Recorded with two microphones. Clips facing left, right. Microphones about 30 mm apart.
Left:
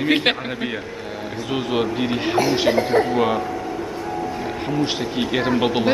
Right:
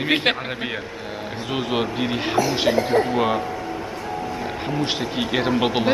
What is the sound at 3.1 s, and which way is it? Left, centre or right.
Speech, centre.